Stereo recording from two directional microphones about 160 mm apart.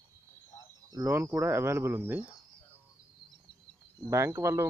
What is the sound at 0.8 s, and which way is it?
Speech, 20° right (ahead or behind).